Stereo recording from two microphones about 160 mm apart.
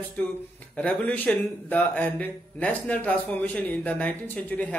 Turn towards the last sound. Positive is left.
turn(degrees=10)  # may be behind; listen again after turning